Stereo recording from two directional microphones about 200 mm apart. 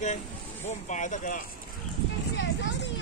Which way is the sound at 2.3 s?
60° left (ahead or behind).